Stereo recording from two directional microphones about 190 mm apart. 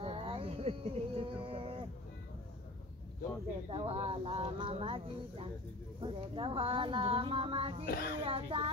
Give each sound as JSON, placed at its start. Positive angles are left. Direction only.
{"t": 0.0, "sound": "a sound", "side_deg": -30}
{"t": 3.7, "sound": "speech", "side_deg": -30}
{"t": 7.8, "sound": "speech", "side_deg": 55}
{"t": 8.3, "sound": "speech", "side_deg": -30}